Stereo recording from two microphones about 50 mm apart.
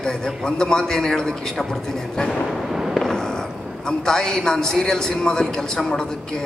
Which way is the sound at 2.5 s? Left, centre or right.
Centre.